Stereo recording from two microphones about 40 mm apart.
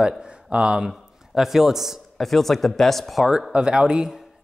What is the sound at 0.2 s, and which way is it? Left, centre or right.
Speech, right.